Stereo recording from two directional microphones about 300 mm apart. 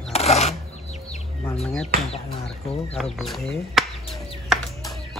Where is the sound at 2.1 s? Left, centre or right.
Centre.